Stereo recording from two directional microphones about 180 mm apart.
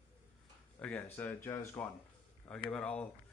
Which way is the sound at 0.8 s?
5° left (ahead or behind).